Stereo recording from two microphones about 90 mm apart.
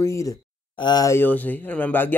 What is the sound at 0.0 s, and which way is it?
Speech, 35° left (ahead or behind).